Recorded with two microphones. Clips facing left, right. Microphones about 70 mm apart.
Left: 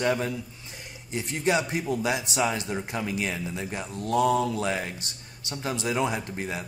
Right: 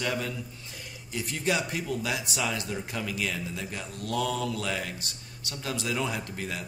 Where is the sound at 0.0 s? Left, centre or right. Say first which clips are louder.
Left 5 dB; left.